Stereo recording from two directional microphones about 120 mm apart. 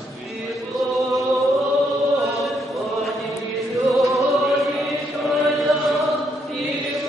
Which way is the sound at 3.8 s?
Centre (ahead or behind).